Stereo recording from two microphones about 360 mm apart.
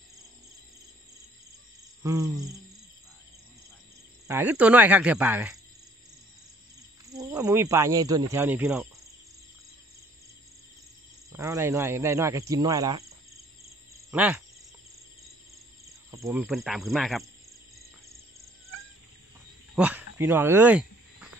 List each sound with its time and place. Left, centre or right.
2.0 s speech: centre
4.3 s speech: centre
7.1 s speech: centre
11.3 s speech: centre
14.1 s speech: centre
16.1 s speech: centre
17.7 s cricket: right
19.7 s a sound: centre